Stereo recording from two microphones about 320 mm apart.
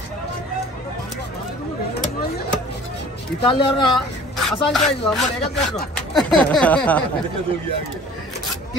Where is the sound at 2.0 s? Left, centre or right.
Left.